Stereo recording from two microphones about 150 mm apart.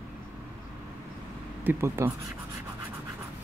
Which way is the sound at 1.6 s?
15° right (ahead or behind).